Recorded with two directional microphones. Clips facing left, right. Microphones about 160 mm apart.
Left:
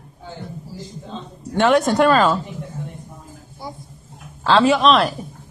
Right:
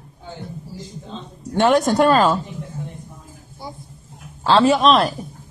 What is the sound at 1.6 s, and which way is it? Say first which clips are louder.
Speech: even; 40° right (ahead or behind).